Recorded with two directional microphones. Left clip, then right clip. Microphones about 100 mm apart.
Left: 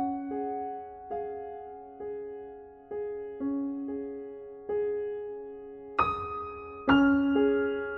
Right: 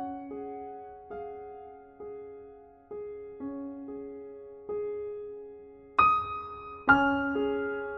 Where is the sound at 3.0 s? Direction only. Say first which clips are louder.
Left 5 dB; 35° left (ahead or behind).